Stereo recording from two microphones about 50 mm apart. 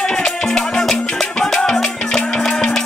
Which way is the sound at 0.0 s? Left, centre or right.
Centre.